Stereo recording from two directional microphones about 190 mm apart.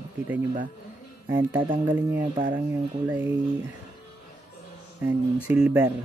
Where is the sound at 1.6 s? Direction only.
25° right (ahead or behind).